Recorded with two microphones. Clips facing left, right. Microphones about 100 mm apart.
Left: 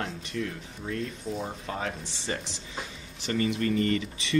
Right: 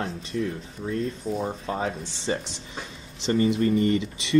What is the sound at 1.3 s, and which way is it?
Speech, 5° right (ahead or behind).